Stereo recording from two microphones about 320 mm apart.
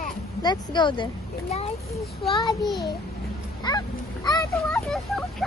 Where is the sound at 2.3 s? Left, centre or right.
Centre.